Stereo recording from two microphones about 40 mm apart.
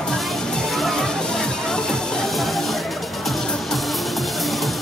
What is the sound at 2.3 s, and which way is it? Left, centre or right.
Music, centre.